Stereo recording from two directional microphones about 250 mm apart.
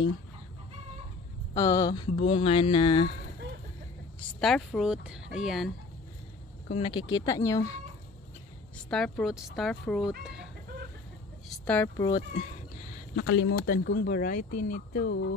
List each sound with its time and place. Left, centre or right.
1.5 s speech: centre
2.2 s music: left
4.4 s speech: centre
6.7 s speech: centre
8.9 s speech: centre
11.4 s speech: centre
13.1 s speech: left
13.7 s speech: left